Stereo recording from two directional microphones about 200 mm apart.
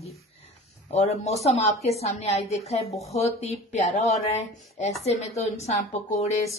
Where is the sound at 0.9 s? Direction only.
30° left (ahead or behind).